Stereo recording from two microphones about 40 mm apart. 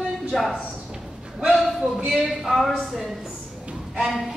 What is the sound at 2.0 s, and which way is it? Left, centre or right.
A woman's voice, centre.